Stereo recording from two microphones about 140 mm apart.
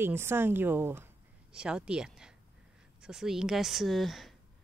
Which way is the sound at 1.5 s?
5° right (ahead or behind).